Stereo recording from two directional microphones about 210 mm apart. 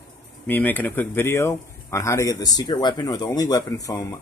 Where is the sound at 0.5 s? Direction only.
10° left (ahead or behind).